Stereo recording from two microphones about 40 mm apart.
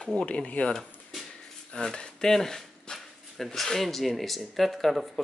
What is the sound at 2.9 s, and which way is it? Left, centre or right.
Dog, left.